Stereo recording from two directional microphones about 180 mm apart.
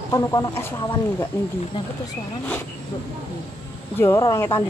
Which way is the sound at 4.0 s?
15° left (ahead or behind).